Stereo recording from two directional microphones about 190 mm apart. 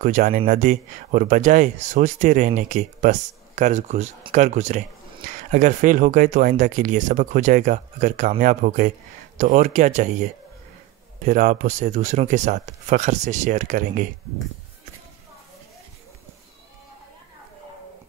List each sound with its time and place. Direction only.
0.0 s speech: 40° right (ahead or behind)
11.2 s speech: 40° right (ahead or behind)